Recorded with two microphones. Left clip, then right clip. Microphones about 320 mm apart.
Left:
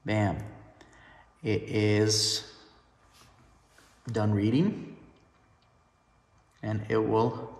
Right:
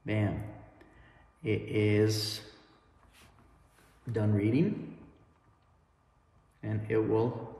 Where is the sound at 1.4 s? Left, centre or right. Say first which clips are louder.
Left 2 dB; centre.